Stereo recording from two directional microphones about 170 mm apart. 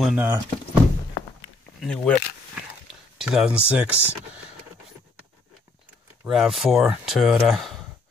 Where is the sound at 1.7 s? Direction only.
5° left (ahead or behind).